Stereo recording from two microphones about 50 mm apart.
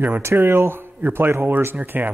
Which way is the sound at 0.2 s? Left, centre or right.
Right.